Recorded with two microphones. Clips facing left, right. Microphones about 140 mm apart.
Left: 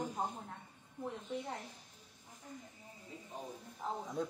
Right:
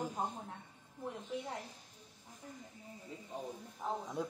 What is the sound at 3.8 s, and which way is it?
Speech, 10° right (ahead or behind).